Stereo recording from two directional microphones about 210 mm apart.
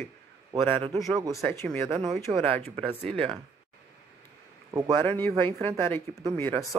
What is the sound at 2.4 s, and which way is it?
Speech, 30° right (ahead or behind).